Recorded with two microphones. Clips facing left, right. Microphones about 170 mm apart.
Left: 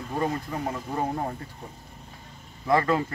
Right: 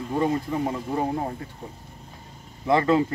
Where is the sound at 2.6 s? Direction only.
25° right (ahead or behind).